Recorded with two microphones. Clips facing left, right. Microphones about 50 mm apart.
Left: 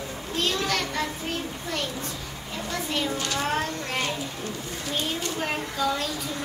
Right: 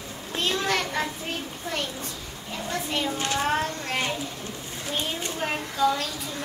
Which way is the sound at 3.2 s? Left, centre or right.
Right.